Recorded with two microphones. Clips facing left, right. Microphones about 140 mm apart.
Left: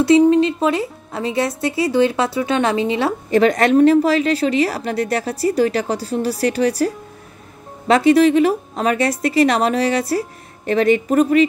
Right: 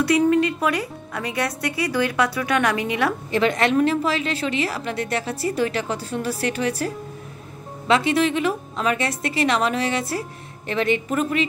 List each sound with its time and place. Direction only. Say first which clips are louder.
0.0 s speech: left 6 dB; 25° left (ahead or behind)
3.3 s a woman's voice: left 8 dB; 40° left (ahead or behind)
7.9 s a woman's voice: left 7 dB; 40° left (ahead or behind)